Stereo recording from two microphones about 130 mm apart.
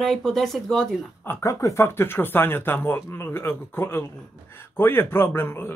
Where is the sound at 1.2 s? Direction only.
20° left (ahead or behind).